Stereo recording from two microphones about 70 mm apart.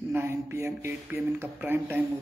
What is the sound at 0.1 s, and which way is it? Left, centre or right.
Speech, right.